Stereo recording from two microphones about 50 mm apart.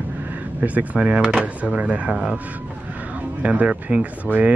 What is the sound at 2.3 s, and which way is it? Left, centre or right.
Wild animals, right.